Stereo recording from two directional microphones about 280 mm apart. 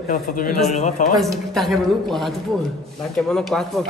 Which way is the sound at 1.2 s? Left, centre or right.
Centre.